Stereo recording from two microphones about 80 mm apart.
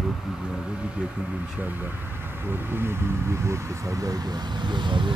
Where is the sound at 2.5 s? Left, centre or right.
Right.